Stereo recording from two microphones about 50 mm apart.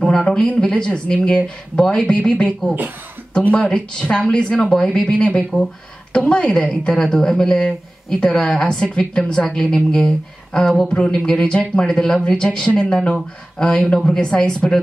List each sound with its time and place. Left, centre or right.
0.0 s a sound: centre
0.6 s speech: centre
3.5 s a woman's voice: left